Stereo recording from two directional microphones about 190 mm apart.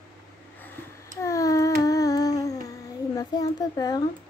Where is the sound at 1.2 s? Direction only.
15° left (ahead or behind).